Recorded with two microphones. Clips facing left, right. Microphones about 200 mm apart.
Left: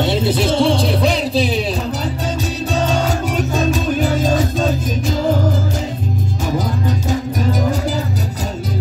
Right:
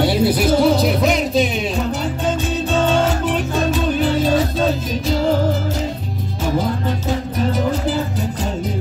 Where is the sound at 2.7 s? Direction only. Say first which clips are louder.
Right 2 dB; 40° left (ahead or behind).